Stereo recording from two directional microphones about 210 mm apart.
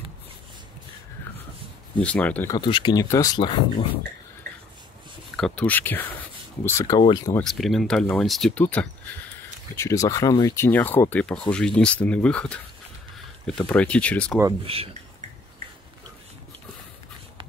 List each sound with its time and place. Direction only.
2.0 s speech: 5° left (ahead or behind)
2.5 s speech: 20° left (ahead or behind)
5.3 s speech: 5° left (ahead or behind); by 7.3 s 20° left (ahead or behind)
7.3 s speech: centre (ahead or behind)
13.6 s speech: 5° left (ahead or behind)
14.7 s speech: 25° right (ahead or behind)